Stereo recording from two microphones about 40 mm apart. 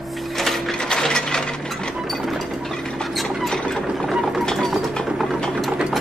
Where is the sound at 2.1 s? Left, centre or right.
Centre.